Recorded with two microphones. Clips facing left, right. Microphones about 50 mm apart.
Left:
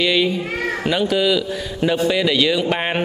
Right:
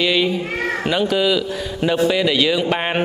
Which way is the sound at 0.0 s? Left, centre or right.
Centre.